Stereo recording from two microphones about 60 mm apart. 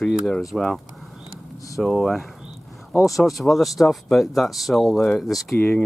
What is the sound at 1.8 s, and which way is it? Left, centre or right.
Speech, centre.